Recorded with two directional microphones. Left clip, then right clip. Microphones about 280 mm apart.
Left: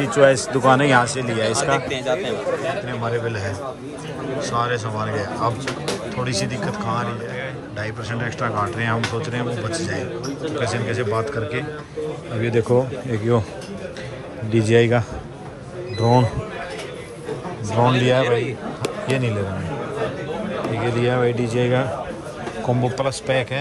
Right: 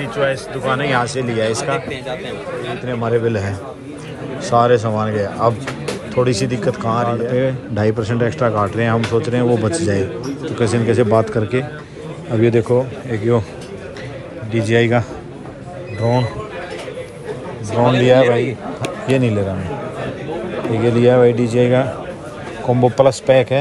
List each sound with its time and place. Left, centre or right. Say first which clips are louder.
0.0 s a man's voice: left 4 dB; left
2.9 s a man's voice: right 6 dB; centre
14.5 s a man's voice: right 1 dB; centre
17.6 s a man's voice: right 3 dB; centre
18.0 s a man's voice: right 6 dB; centre
20.7 s a man's voice: right 9 dB; centre